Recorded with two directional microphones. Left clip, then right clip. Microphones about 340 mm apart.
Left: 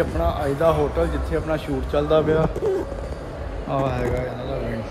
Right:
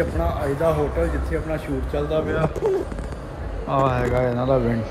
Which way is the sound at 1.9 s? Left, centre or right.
Left.